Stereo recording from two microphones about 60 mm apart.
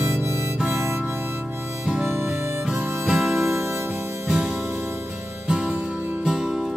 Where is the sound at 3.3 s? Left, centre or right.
Right.